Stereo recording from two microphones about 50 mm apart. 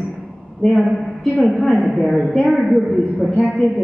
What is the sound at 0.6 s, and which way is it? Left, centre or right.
A man's voice, centre.